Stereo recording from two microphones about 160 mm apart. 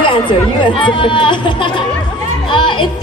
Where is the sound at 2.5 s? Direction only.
30° left (ahead or behind).